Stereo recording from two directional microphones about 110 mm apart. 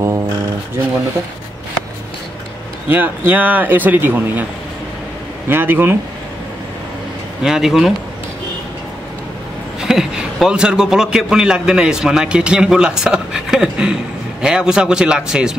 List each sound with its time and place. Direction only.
2.9 s a man's voice: 15° right (ahead or behind)
5.5 s speech: 20° right (ahead or behind)
7.4 s speech: 5° right (ahead or behind)
9.8 s a man's voice: 5° right (ahead or behind)